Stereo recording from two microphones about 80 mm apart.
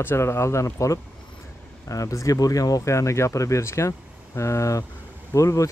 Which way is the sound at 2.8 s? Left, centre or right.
Left.